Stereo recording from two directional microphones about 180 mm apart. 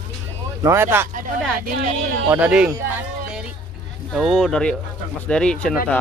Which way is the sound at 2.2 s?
5° right (ahead or behind).